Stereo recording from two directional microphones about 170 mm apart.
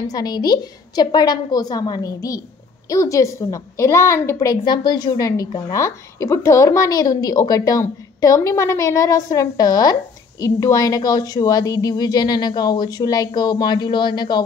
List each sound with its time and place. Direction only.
0.1 s a woman's voice: 25° left (ahead or behind)